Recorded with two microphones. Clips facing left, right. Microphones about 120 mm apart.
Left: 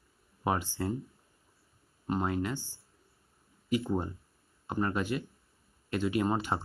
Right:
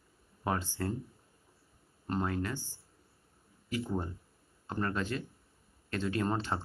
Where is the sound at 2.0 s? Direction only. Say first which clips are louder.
Left 2 dB; 15° left (ahead or behind).